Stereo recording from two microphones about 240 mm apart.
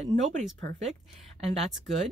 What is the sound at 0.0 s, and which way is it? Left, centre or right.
Speech, right.